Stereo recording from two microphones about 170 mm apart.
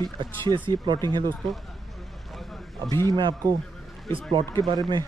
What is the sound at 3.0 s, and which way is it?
Speech, 25° right (ahead or behind).